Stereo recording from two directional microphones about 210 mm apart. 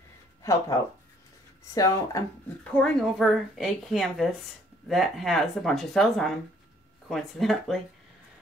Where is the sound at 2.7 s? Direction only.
5° left (ahead or behind).